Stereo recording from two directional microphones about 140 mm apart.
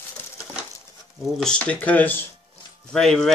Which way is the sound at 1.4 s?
10° left (ahead or behind).